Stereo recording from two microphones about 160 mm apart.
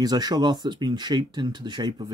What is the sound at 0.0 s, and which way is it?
Speech, 25° right (ahead or behind).